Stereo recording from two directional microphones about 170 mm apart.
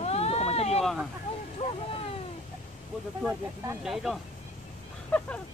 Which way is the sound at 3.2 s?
5° right (ahead or behind).